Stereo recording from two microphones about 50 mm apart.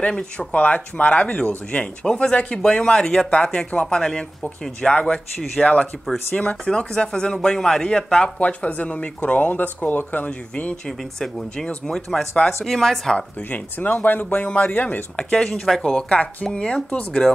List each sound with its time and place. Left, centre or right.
0.1 s speech: centre
0.5 s speech: left
2.0 s speech: centre
8.4 s speech: left
10.9 s speech: centre
13.5 s speech: left
15.1 s speech: left
15.4 s speech: centre
15.8 s speech: centre